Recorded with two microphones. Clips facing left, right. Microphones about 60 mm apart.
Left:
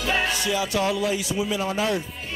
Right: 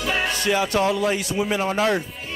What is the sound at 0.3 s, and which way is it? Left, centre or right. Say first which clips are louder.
Speech: right 3 dB; right.